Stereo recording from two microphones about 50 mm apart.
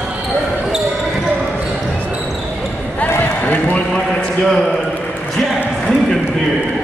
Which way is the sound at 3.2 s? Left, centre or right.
Left.